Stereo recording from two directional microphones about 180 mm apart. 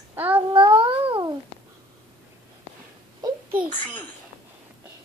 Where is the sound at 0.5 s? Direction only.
30° right (ahead or behind).